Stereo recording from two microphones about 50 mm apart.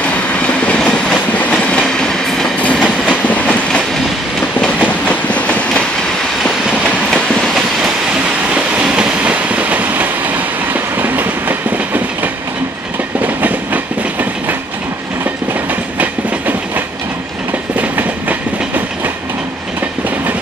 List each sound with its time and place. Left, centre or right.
0.7 s train: centre
1.8 s train: centre
2.6 s train: left
7.2 s train: centre
8.5 s train: centre; by 12.3 s right
16.0 s train: right